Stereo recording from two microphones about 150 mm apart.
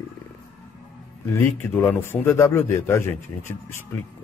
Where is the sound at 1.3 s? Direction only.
15° left (ahead or behind).